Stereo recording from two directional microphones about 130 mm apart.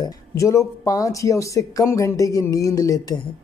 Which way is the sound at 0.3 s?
25° left (ahead or behind).